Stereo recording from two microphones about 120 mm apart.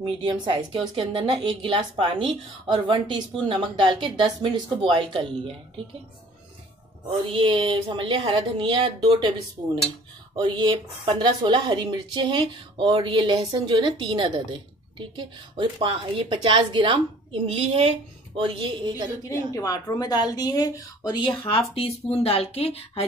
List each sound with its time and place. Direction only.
0.0 s speech: 40° right (ahead or behind)
7.2 s speech: 50° right (ahead or behind)
10.3 s speech: 40° right (ahead or behind)
13.5 s speech: 35° right (ahead or behind); by 18.7 s 55° right (ahead or behind)
19.2 s a woman's voice: 30° left (ahead or behind); by 23.0 s 55° left (ahead or behind)